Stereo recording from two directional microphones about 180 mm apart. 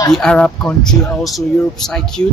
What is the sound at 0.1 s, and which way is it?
Speech, 5° left (ahead or behind).